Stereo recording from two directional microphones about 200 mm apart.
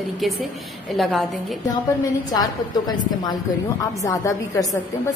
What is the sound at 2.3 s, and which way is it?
A woman's voice, 20° left (ahead or behind).